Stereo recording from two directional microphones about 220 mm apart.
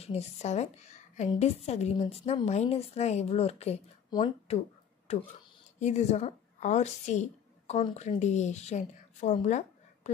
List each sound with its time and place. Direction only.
0.0 s a woman's voice: 30° left (ahead or behind)
5.8 s a woman's voice: 30° left (ahead or behind)